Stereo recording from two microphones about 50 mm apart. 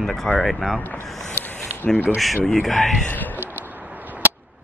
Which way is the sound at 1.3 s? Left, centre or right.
Left.